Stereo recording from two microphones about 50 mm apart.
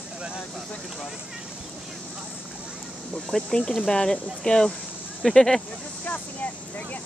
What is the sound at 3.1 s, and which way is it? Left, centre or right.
Speech, centre.